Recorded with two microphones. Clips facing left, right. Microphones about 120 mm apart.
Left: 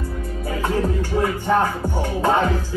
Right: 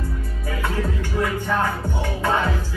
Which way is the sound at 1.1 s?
30° left (ahead or behind).